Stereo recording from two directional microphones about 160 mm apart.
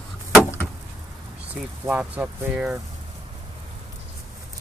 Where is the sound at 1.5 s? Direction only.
10° right (ahead or behind).